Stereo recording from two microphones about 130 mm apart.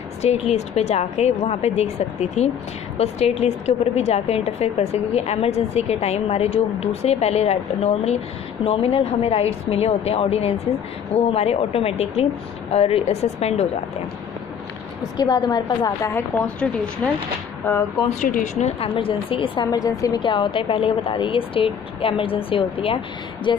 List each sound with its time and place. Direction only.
0.2 s a woman's voice: 55° left (ahead or behind)
15.1 s a woman's voice: 30° left (ahead or behind)
16.2 s a woman's voice: 10° left (ahead or behind)
18.2 s a woman's voice: 70° left (ahead or behind); by 19.7 s 40° left (ahead or behind)
19.7 s a woman's voice: 30° left (ahead or behind); by 22.9 s 45° left (ahead or behind)